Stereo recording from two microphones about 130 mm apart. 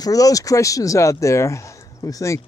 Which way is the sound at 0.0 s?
25° left (ahead or behind).